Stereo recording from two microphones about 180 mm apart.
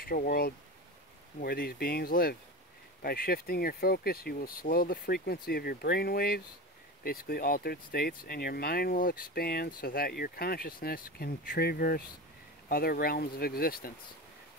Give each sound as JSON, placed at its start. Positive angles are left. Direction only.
{"t": 0.0, "sound": "speech", "side_deg": 55}